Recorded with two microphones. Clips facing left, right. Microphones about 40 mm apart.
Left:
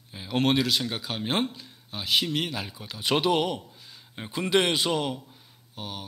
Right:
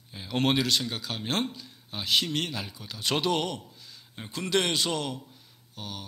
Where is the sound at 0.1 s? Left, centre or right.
Centre.